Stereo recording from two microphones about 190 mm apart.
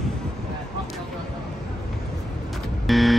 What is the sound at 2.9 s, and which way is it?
Vehicle, centre (ahead or behind).